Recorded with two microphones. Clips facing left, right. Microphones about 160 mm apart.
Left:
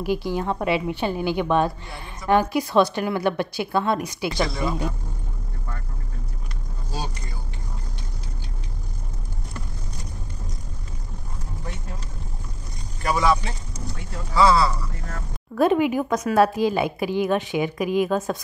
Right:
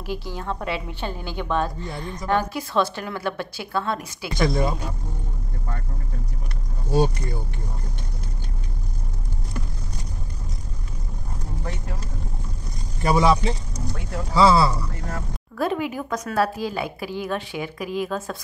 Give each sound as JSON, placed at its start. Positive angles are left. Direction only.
{"t": 0.0, "sound": "a woman's voice", "side_deg": 15}
{"t": 4.3, "sound": "speech", "side_deg": -50}
{"t": 6.9, "sound": "speech", "side_deg": -55}
{"t": 13.0, "sound": "speech", "side_deg": -30}
{"t": 15.5, "sound": "speech", "side_deg": 20}